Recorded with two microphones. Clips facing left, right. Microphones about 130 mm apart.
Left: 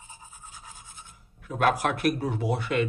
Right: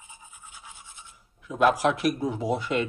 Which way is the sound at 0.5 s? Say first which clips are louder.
Left 1 dB; 40° left (ahead or behind).